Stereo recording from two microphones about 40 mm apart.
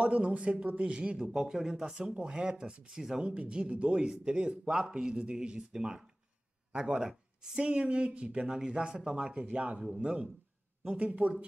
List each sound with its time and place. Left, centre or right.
0.0 s speech: right
1.1 s speech: centre
2.1 s speech: right
3.3 s speech: right
7.0 s speech: centre; by 9.8 s right
10.0 s speech: centre
10.9 s speech: right